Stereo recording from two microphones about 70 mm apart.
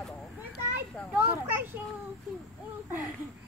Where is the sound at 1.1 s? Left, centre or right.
Right.